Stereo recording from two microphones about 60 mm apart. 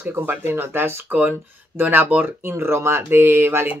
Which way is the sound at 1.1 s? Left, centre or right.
Right.